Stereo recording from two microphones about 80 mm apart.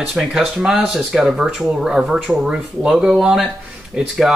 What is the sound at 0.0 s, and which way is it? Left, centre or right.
Speech, centre.